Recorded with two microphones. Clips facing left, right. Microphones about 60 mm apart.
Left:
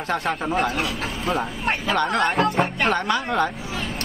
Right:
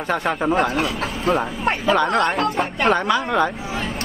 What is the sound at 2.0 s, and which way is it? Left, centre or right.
Speech, centre.